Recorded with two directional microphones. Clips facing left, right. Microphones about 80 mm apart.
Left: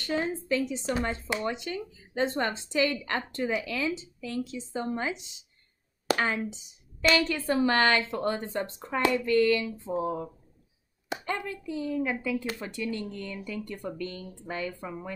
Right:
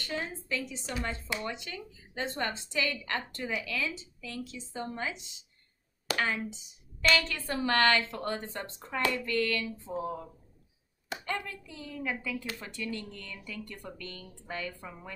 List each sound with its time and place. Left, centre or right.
0.1 s speech: left
7.0 s speech: centre